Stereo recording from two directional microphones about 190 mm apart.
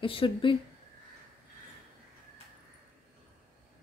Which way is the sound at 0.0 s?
30° left (ahead or behind).